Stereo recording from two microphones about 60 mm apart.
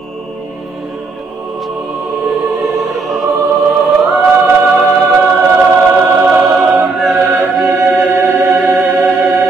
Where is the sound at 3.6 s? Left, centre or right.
Centre.